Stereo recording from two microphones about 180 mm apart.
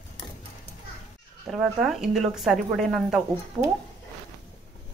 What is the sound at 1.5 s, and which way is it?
Speech, 5° right (ahead or behind).